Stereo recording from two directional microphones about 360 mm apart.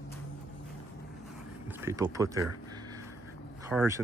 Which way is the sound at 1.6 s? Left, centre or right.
Centre.